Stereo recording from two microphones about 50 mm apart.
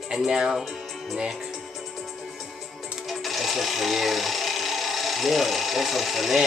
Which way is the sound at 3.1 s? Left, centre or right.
Centre.